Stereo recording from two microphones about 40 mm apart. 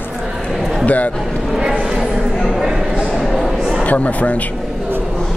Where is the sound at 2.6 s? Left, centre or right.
Centre.